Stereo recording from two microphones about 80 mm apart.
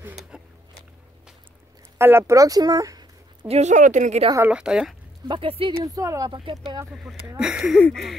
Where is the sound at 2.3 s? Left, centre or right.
Right.